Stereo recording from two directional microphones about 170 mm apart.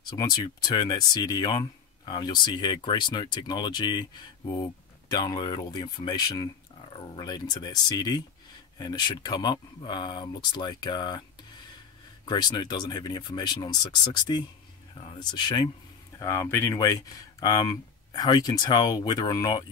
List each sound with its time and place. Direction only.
0.0 s speech: 25° left (ahead or behind)
12.3 s speech: 25° left (ahead or behind)
16.2 s speech: 15° left (ahead or behind)